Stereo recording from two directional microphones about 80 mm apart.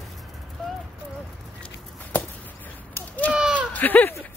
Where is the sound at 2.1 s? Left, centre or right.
Left.